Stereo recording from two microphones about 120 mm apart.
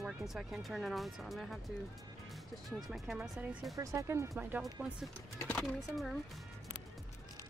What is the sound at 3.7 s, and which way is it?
Speech, 25° right (ahead or behind).